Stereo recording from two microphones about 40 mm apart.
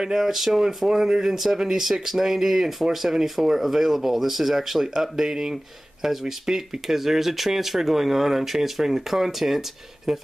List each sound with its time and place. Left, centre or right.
0.0 s speech: centre